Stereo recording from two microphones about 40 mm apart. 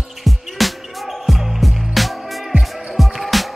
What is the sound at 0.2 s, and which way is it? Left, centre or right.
Music, centre.